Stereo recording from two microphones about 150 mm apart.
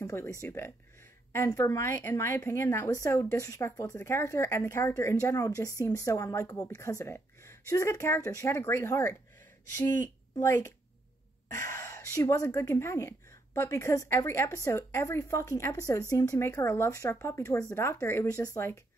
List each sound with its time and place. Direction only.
0.0 s speech: 20° left (ahead or behind)
10.3 s a woman's voice: 20° left (ahead or behind)